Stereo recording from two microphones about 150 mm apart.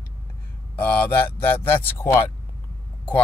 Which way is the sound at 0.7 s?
15° left (ahead or behind).